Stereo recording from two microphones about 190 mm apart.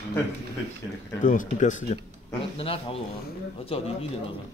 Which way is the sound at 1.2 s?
45° left (ahead or behind).